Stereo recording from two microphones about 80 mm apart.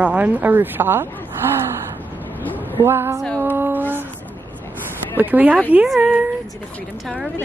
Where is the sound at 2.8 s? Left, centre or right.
Right.